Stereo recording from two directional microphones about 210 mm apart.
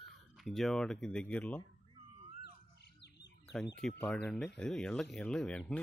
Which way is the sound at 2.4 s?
55° left (ahead or behind).